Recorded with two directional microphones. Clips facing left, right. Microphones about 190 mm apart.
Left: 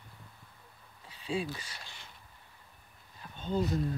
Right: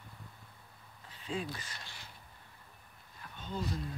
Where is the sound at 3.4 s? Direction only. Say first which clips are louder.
Left 8 dB; 35° left (ahead or behind).